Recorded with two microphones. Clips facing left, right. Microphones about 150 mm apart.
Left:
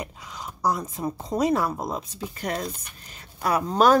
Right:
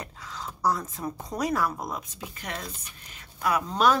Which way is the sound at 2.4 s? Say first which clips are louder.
Left 8 dB; 35° left (ahead or behind).